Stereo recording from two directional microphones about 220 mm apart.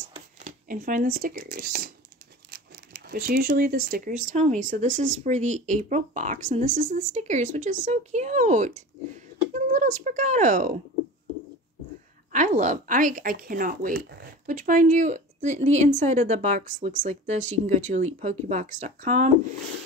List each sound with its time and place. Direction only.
0.4 s speech: 35° right (ahead or behind)
12.3 s speech: 35° right (ahead or behind)